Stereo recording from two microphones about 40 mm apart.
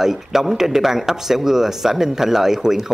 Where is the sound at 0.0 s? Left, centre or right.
Centre.